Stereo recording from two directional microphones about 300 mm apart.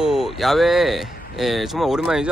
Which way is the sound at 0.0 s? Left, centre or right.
Centre.